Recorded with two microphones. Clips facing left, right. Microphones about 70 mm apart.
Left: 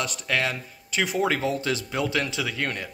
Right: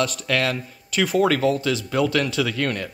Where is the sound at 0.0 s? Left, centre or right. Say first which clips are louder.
Right 4 dB; centre.